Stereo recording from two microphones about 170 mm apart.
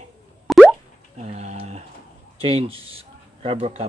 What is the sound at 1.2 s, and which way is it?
Speech, 40° right (ahead or behind).